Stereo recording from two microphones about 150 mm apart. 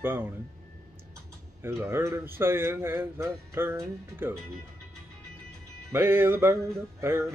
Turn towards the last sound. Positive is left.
turn(degrees=-15)  # may be behind; listen again after turning